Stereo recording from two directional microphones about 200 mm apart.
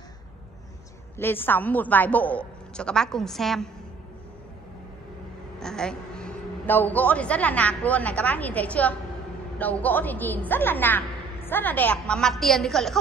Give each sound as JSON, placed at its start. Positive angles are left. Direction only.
{"t": 1.1, "sound": "a woman's voice", "side_deg": 10}
{"t": 5.6, "sound": "a man's voice", "side_deg": 5}